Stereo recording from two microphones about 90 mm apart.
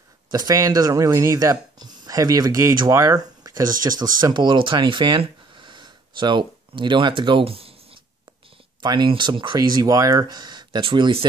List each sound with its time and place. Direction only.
0.3 s speech: 45° right (ahead or behind); by 8.0 s 90° right
8.8 s speech: 60° right (ahead or behind)
9.6 s speech: 40° right (ahead or behind)
10.8 s speech: 80° right